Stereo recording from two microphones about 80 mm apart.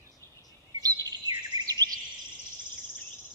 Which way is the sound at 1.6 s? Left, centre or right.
Right.